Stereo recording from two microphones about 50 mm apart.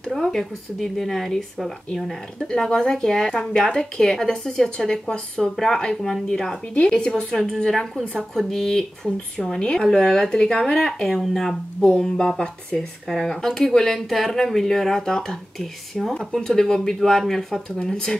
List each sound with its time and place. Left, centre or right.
0.1 s speech: centre